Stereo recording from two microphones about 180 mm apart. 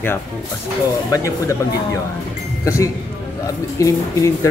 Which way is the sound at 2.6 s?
15° left (ahead or behind).